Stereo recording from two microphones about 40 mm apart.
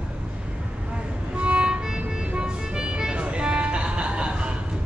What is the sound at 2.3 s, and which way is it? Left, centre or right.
Vehicle, right.